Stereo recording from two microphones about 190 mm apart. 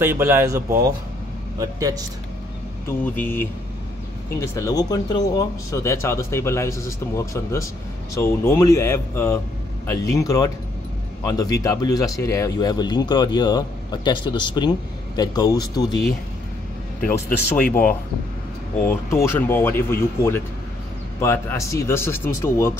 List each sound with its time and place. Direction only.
0.0 s speech: 10° right (ahead or behind)
2.9 s speech: 10° left (ahead or behind)
17.0 s speech: 10° left (ahead or behind)
18.9 s speech: 15° left (ahead or behind)